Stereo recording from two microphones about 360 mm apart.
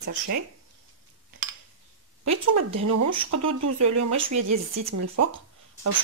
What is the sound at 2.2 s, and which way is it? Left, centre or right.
Speech, right.